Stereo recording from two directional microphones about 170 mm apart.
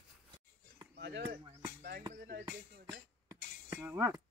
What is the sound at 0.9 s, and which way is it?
Speech, 80° right.